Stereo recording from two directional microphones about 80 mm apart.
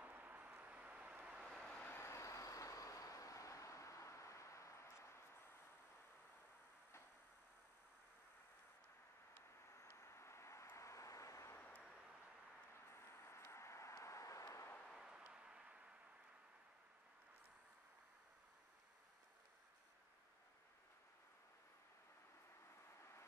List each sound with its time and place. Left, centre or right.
0.0 s vehicle: right
1.4 s vehicle: centre
1.8 s vehicle: left
2.0 s vehicle: left
9.8 s vehicle: left
11.5 s vehicle: centre
12.9 s vehicle: left
15.0 s a sound: centre